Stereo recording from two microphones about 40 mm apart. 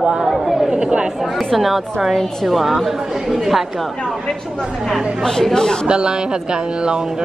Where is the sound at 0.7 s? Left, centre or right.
Right.